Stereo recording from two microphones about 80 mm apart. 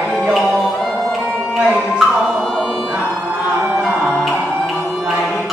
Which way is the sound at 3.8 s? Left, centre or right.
Centre.